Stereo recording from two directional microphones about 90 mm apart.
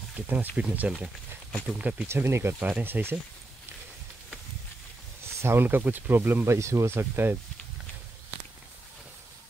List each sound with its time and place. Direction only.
0.1 s speech: 15° right (ahead or behind)
2.0 s speech: 30° right (ahead or behind)
5.2 s speech: 30° right (ahead or behind)